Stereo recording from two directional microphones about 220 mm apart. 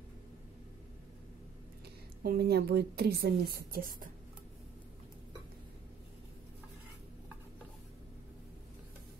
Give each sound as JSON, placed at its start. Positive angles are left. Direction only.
{"t": 2.2, "sound": "a woman's voice", "side_deg": -45}